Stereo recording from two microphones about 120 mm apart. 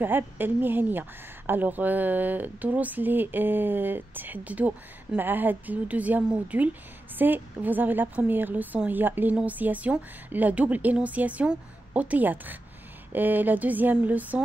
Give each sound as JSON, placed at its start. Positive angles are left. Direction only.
{"t": 0.0, "sound": "a woman's voice", "side_deg": -15}